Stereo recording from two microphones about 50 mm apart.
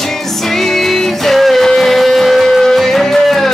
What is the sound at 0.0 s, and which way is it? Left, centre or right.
Music, centre.